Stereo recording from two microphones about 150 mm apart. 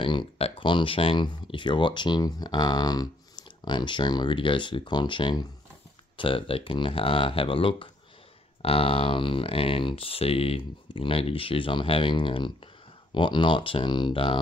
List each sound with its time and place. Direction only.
0.0 s speech: 35° left (ahead or behind)